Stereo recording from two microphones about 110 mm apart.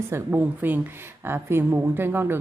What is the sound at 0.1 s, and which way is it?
A woman's voice, 15° right (ahead or behind).